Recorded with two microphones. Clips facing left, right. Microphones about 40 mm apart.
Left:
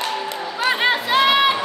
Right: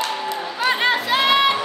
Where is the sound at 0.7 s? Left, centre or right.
Centre.